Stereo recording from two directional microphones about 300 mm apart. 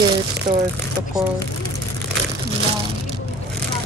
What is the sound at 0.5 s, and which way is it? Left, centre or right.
Speech, centre.